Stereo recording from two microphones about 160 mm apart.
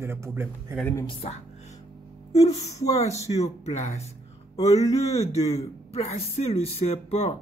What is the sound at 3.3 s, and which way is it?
Speech, 40° left (ahead or behind).